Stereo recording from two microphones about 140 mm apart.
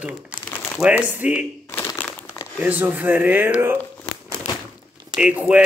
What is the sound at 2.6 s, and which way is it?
Speech, 10° right (ahead or behind).